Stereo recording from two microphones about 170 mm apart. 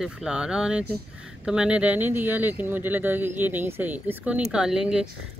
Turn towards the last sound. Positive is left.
turn(degrees=-5)  # may be behind; listen again after turning